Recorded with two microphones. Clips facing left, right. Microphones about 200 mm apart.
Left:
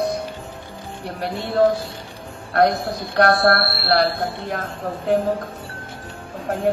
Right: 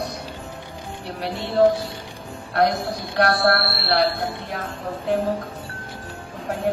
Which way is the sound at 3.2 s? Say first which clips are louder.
Left 3 dB; 50° left (ahead or behind).